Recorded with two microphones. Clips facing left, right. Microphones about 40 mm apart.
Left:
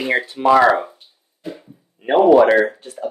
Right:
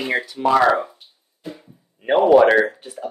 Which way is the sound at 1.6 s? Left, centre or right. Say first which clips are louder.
Left 4 dB; centre.